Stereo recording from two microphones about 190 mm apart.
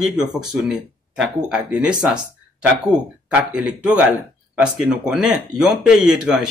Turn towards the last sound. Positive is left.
turn(degrees=-5)  # may be behind; listen again after turning